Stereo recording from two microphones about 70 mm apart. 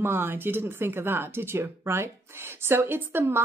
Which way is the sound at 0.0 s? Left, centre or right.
Right.